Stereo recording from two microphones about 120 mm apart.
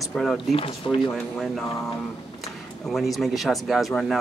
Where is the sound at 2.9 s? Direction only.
Centre (ahead or behind).